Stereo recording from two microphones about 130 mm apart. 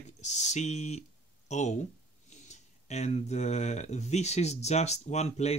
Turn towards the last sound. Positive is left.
turn(degrees=55)  # may be behind; listen again after turning